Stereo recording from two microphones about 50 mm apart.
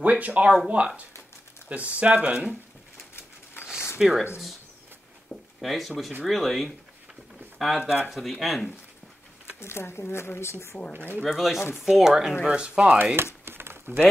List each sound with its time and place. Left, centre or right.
0.0 s speech: right
3.6 s a sound: left
4.0 s speech: centre
5.3 s a sound: centre
6.2 s speech: centre
9.6 s speech: left
10.9 s speech: right
11.2 s speech: centre
12.4 s speech: right
13.0 s a sound: right